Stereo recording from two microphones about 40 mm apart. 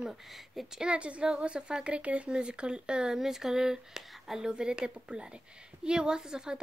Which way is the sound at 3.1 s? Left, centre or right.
Centre.